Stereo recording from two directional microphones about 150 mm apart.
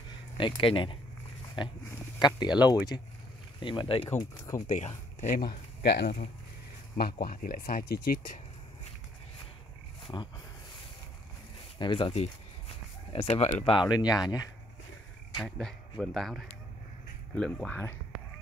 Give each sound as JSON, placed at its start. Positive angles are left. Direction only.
{"t": 0.4, "sound": "speech", "side_deg": 35}
{"t": 2.1, "sound": "speech", "side_deg": 30}
{"t": 4.6, "sound": "speech", "side_deg": 55}
{"t": 5.8, "sound": "speech", "side_deg": 90}
{"t": 11.8, "sound": "speech", "side_deg": 35}
{"t": 15.4, "sound": "speech", "side_deg": 5}